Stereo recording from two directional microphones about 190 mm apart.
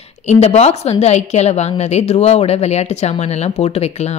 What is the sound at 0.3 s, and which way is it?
Speech, 35° left (ahead or behind).